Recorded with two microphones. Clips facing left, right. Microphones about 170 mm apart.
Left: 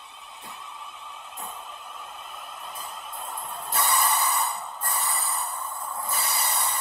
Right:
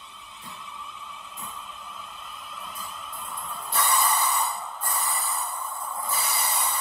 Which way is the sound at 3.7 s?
20° left (ahead or behind).